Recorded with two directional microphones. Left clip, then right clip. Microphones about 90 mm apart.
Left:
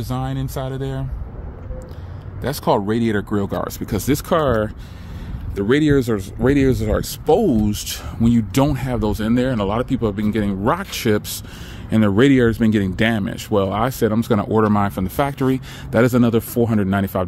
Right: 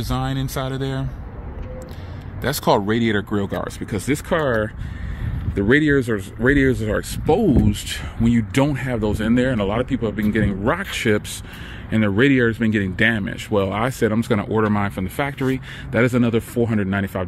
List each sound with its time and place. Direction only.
0.1 s speech: 15° left (ahead or behind)
2.4 s speech: 10° left (ahead or behind)
3.8 s speech: 50° left (ahead or behind); by 11.1 s 25° left (ahead or behind)
11.9 s speech: 40° left (ahead or behind)
13.6 s speech: 20° left (ahead or behind)
14.3 s speech: 40° left (ahead or behind)
16.0 s speech: 30° left (ahead or behind)